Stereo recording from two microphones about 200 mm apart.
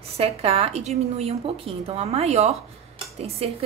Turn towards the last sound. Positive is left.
turn(degrees=-30)  # may be behind; listen again after turning